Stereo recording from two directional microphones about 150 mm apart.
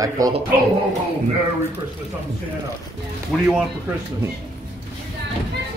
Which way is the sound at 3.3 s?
5° left (ahead or behind).